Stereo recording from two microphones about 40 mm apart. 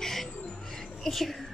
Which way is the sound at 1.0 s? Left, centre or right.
Centre.